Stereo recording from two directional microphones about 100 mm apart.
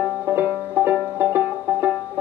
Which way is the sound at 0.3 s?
20° right (ahead or behind).